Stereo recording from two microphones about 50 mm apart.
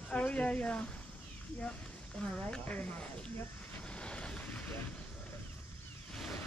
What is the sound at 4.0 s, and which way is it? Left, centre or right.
Vehicle, left.